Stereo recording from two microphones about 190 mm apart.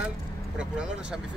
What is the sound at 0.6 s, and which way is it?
Speech, 5° right (ahead or behind).